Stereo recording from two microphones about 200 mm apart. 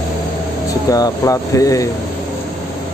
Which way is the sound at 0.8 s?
15° left (ahead or behind).